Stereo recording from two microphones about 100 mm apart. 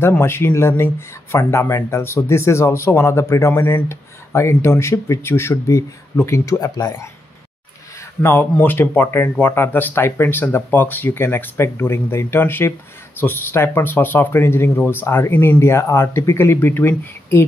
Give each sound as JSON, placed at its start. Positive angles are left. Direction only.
{"t": 0.2, "sound": "speech", "side_deg": 25}
{"t": 8.2, "sound": "speech", "side_deg": 20}